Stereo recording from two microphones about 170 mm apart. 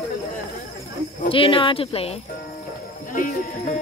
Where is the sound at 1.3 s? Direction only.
30° left (ahead or behind).